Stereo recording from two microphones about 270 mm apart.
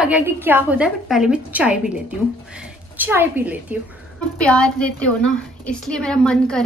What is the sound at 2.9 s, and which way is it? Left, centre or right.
A woman's voice, centre.